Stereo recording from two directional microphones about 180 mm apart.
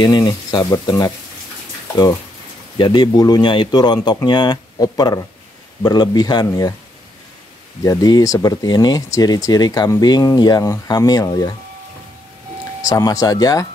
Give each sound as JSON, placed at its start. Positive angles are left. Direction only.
{"t": 0.0, "sound": "speech", "side_deg": 25}
{"t": 2.8, "sound": "speech", "side_deg": 25}
{"t": 7.8, "sound": "speech", "side_deg": 20}
{"t": 12.8, "sound": "speech", "side_deg": 20}